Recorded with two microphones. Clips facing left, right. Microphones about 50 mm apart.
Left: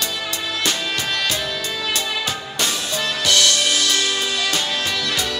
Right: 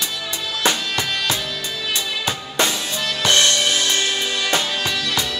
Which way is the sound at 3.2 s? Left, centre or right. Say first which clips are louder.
Right 2 dB; right.